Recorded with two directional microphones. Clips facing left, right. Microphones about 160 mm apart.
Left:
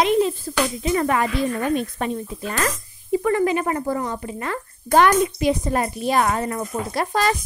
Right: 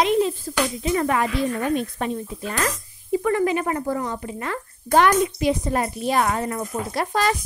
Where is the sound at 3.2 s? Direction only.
35° left (ahead or behind).